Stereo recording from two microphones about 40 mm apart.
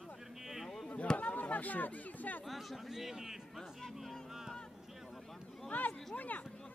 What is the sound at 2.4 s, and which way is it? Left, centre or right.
Speech, centre.